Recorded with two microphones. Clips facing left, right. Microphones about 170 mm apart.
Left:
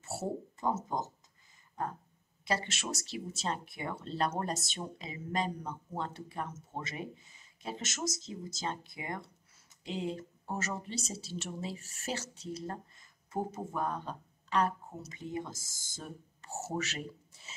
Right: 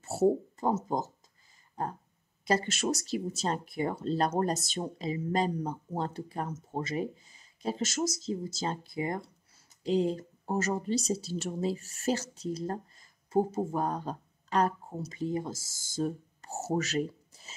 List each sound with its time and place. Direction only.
0.0 s speech: 40° right (ahead or behind)
1.8 s a sound: 35° right (ahead or behind)
2.4 s speech: 40° right (ahead or behind)